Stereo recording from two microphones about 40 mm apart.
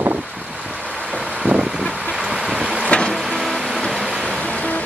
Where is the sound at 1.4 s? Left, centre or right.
Right.